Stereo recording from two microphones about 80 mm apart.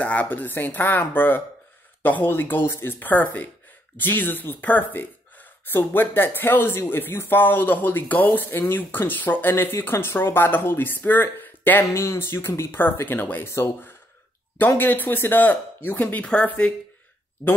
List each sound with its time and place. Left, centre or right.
0.0 s speech: centre